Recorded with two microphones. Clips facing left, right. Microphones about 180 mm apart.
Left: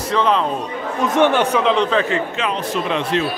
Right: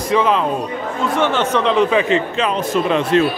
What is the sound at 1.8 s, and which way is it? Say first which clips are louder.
Speech: right 3 dB; 15° right (ahead or behind).